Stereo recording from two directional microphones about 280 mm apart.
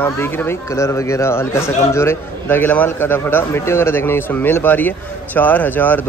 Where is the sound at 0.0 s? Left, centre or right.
Centre.